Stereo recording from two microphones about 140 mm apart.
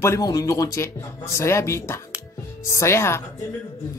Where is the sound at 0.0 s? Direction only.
25° left (ahead or behind).